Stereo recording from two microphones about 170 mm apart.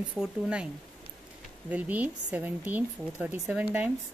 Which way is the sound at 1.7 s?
10° right (ahead or behind).